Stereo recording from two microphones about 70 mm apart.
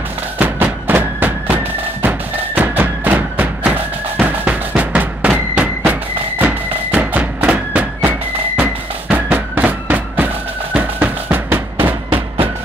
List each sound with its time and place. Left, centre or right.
0.4 s music: right